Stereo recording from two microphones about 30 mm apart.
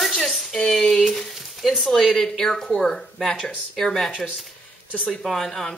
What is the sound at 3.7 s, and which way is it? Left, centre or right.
Rub, centre.